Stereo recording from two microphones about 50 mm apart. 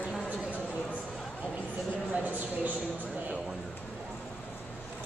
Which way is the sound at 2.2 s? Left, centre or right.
Right.